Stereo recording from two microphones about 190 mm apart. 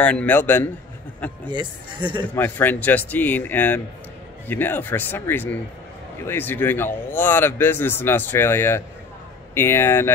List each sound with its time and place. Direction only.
0.0 s speech: 5° left (ahead or behind)
1.5 s speech: 25° right (ahead or behind)
2.2 s speech: 10° left (ahead or behind)